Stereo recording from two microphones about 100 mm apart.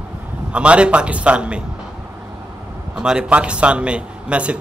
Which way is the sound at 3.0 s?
10° right (ahead or behind).